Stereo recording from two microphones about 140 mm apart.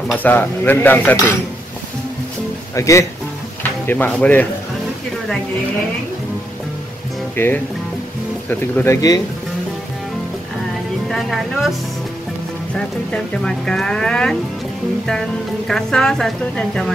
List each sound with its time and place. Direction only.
0.1 s speech: 15° left (ahead or behind)
2.7 s speech: 20° left (ahead or behind)
7.3 s speech: 15° left (ahead or behind)
11.1 s speech: centre (ahead or behind)
12.7 s speech: 5° left (ahead or behind)